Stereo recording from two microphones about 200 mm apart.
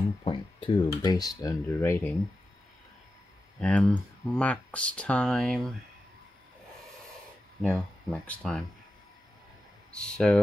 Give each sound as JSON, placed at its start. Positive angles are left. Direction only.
{"t": 0.2, "sound": "speech", "side_deg": 25}
{"t": 3.5, "sound": "speech", "side_deg": 5}
{"t": 7.6, "sound": "speech", "side_deg": 5}
{"t": 9.9, "sound": "speech", "side_deg": 5}